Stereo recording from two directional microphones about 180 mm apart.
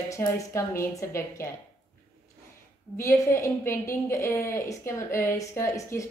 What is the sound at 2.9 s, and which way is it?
A woman's voice, 15° left (ahead or behind).